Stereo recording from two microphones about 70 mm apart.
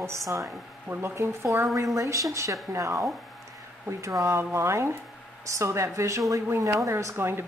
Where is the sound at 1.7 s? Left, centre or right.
Right.